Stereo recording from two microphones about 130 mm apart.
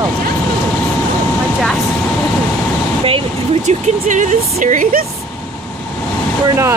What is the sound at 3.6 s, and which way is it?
Speech, 70° right (ahead or behind).